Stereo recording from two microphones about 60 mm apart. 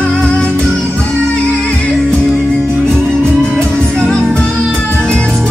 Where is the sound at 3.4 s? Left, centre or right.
Centre.